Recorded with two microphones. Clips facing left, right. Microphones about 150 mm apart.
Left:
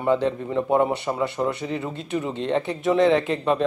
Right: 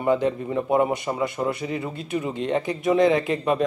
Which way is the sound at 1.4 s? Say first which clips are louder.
Left 1 dB; 25° left (ahead or behind).